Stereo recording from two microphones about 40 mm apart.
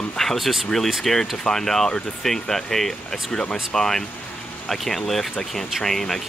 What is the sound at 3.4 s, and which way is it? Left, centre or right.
Speech, left.